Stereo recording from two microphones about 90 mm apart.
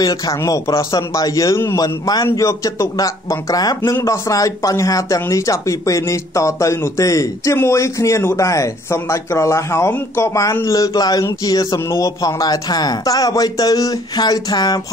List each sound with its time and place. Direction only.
0.0 s speech: 45° left (ahead or behind)